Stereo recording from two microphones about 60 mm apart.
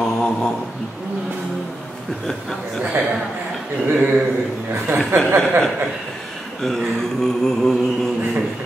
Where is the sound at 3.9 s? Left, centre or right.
Right.